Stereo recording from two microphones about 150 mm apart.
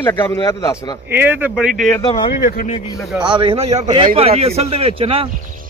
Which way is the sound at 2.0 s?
35° left (ahead or behind).